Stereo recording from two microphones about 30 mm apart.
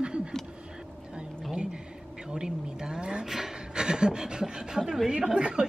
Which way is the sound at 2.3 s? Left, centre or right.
Right.